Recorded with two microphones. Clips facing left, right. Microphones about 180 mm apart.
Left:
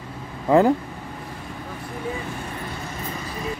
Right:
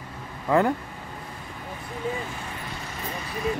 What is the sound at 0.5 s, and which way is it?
Speech, 30° left (ahead or behind).